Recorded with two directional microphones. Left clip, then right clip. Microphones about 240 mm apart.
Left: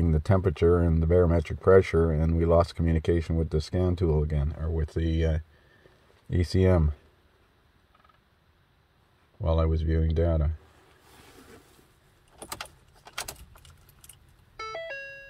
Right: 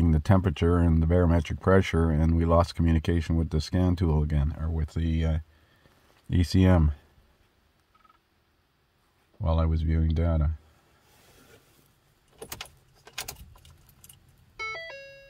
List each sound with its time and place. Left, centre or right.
0.0 s speech: centre
6.3 s speech: centre
9.4 s speech: centre